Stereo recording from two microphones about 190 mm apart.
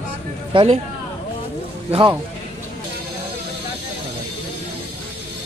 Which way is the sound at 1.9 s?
25° right (ahead or behind).